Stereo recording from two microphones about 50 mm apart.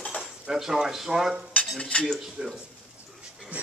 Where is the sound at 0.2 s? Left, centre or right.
Centre.